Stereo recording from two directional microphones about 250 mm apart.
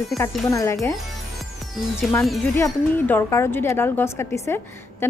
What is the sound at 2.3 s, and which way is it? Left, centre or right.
Speech, centre.